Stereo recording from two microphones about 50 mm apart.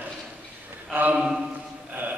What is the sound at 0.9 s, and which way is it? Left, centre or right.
Speech, right.